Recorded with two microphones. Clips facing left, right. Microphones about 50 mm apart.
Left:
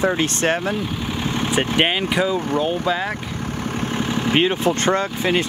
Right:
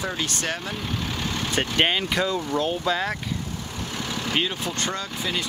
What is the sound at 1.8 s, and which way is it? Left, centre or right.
Speech, centre.